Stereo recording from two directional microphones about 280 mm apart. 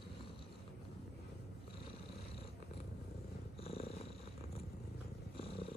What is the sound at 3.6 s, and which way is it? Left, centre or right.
Purr, left.